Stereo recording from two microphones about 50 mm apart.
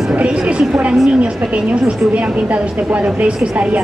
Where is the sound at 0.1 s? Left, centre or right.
Right.